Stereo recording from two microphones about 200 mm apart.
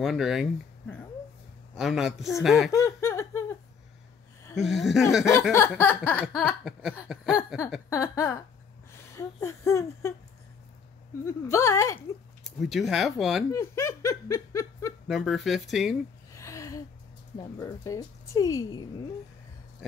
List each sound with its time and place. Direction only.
0.0 s speech: centre (ahead or behind)
2.7 s a sound: 15° left (ahead or behind)
4.6 s speech: centre (ahead or behind)
5.5 s speech: 10° left (ahead or behind)
7.3 s speech: 15° left (ahead or behind)
11.2 s speech: 15° left (ahead or behind)
12.4 s speech: centre (ahead or behind)
13.5 s speech: 15° left (ahead or behind)
15.0 s speech: centre (ahead or behind)
16.3 s a sound: 15° left (ahead or behind)
17.4 s speech: 15° left (ahead or behind)